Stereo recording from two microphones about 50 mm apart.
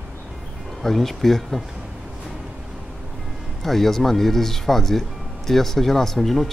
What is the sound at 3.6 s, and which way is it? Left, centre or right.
Speech, centre.